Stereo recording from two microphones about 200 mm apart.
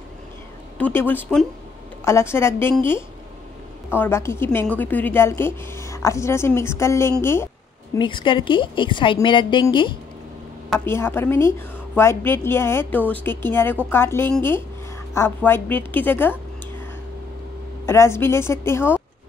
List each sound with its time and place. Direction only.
0.7 s a woman's voice: 10° left (ahead or behind)
7.9 s a woman's voice: 25° left (ahead or behind)
10.9 s a woman's voice: 10° left (ahead or behind)
17.8 s a woman's voice: 15° left (ahead or behind)